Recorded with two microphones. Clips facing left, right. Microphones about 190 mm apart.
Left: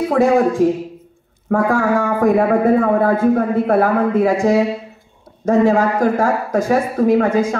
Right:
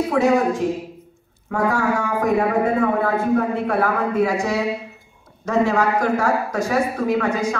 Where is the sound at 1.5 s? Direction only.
50° left (ahead or behind).